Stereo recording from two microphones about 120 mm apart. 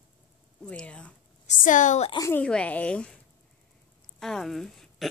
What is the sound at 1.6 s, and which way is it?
Speech, 90° left.